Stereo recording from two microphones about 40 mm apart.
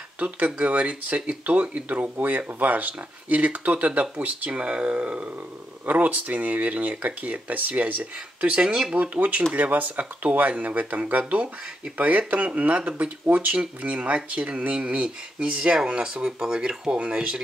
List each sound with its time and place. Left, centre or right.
0.2 s speech: right
8.5 s speech: right
8.9 s speech: right